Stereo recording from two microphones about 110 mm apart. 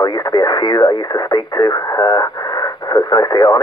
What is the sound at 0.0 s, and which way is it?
Speech, 40° left (ahead or behind).